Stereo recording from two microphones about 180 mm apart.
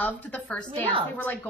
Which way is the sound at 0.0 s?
10° left (ahead or behind).